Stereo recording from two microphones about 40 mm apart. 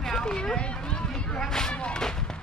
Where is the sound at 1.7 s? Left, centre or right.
Left.